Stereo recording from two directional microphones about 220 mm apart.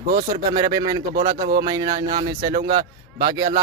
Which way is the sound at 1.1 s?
40° right (ahead or behind).